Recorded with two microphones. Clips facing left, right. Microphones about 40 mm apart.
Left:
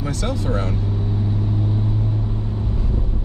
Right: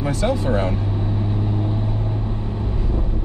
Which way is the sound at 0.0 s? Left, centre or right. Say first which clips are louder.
Right 4 dB; centre.